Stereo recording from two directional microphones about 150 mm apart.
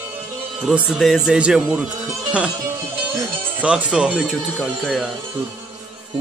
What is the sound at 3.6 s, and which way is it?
Speech, 10° right (ahead or behind).